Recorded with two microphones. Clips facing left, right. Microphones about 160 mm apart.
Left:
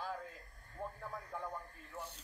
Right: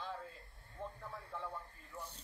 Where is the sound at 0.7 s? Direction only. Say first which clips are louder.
Left 2 dB; 45° left (ahead or behind).